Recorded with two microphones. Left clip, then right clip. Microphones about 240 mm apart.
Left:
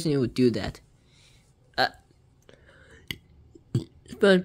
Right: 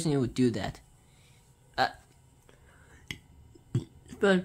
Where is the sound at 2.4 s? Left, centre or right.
Left.